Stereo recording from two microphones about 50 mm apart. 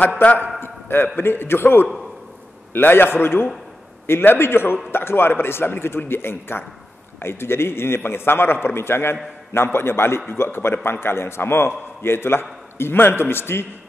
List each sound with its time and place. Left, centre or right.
0.6 s a man's voice: left